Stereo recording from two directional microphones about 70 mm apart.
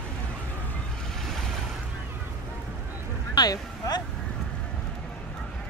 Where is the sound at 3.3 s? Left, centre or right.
Left.